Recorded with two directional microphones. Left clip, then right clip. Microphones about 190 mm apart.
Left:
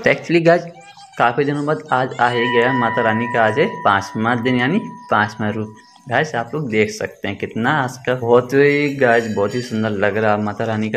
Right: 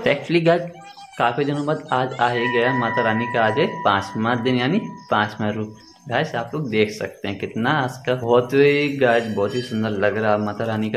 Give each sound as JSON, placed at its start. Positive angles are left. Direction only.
{"t": 0.0, "sound": "speech", "side_deg": 20}